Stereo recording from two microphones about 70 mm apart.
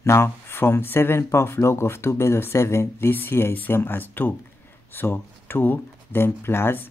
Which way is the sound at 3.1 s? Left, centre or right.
Left.